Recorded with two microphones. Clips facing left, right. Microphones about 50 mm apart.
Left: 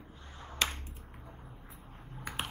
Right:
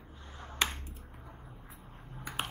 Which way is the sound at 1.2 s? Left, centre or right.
Centre.